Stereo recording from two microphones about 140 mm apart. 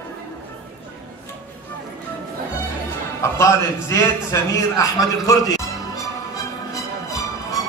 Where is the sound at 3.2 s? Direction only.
20° left (ahead or behind).